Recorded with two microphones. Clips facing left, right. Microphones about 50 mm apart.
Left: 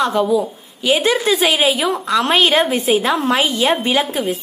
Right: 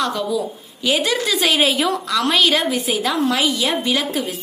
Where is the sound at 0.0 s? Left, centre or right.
Left.